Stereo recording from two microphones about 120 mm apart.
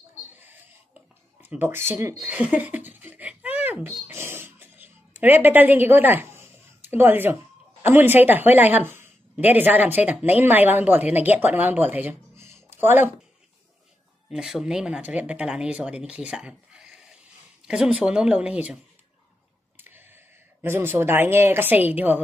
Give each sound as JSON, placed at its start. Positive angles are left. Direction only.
{"t": 1.4, "sound": "a woman's voice", "side_deg": -15}
{"t": 2.2, "sound": "a sound", "side_deg": -15}
{"t": 7.8, "sound": "a woman's voice", "side_deg": -15}
{"t": 14.3, "sound": "a woman's voice", "side_deg": -5}
{"t": 19.8, "sound": "a sound", "side_deg": -20}
{"t": 20.6, "sound": "a woman's voice", "side_deg": -20}